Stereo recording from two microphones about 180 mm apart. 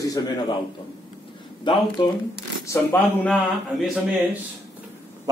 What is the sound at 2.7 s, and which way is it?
Speech, 10° left (ahead or behind).